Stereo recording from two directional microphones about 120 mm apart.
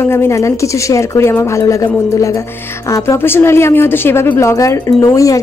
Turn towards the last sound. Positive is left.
turn(degrees=30)  # may be behind; listen again after turning